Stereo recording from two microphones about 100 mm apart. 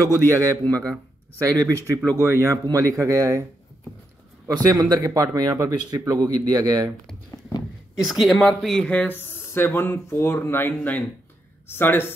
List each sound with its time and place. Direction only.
0.0 s speech: 35° right (ahead or behind)
4.6 s speech: 40° right (ahead or behind)
8.0 s speech: centre (ahead or behind)
9.2 s speech: 25° left (ahead or behind)